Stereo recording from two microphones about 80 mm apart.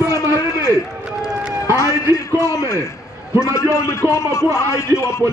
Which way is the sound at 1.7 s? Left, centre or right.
Left.